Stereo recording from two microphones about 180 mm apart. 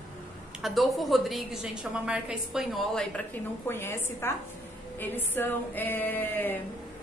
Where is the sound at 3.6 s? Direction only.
10° left (ahead or behind).